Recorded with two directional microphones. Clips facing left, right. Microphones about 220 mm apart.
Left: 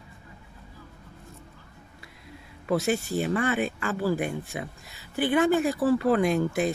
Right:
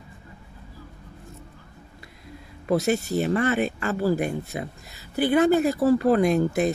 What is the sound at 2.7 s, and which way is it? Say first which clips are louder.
Speech: right 3 dB; 40° right (ahead or behind).